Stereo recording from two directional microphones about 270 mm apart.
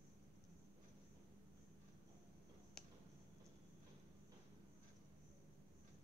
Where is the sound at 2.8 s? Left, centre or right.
Centre.